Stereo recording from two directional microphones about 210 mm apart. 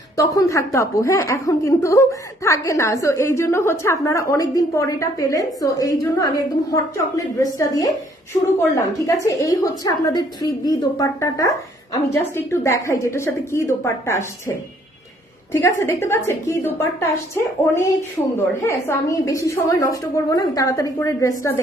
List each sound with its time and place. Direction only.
0.2 s a woman's voice: 15° left (ahead or behind)
15.5 s a woman's voice: 15° left (ahead or behind)
18.6 s a woman's voice: 15° left (ahead or behind)